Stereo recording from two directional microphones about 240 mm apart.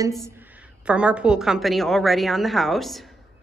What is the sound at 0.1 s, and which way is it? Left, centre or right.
A woman's voice, centre.